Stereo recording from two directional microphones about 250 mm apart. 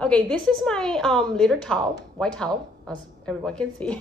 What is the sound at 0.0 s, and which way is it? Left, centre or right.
A woman's voice, centre.